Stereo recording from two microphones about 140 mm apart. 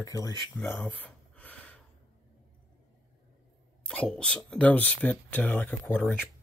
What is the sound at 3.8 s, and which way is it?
Speech, 5° left (ahead or behind).